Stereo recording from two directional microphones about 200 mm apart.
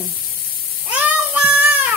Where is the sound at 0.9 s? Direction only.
5° right (ahead or behind).